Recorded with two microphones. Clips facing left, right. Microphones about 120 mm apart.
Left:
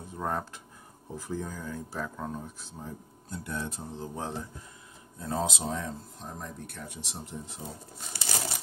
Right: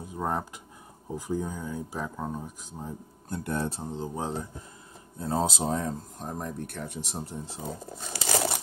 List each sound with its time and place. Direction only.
0.1 s speech: 15° right (ahead or behind)
3.3 s speech: 50° right (ahead or behind)
3.6 s speech: 25° right (ahead or behind)
5.2 s speech: 30° right (ahead or behind)
8.1 s crumpling: 90° right